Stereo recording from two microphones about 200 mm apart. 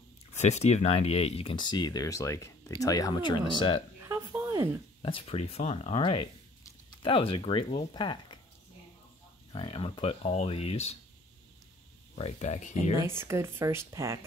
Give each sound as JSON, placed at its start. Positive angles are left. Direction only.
{"t": 0.4, "sound": "speech", "side_deg": 35}
{"t": 4.0, "sound": "a sound", "side_deg": -15}
{"t": 5.0, "sound": "speech", "side_deg": 30}
{"t": 9.5, "sound": "speech", "side_deg": 25}
{"t": 12.2, "sound": "speech", "side_deg": 30}
{"t": 13.0, "sound": "speech", "side_deg": -15}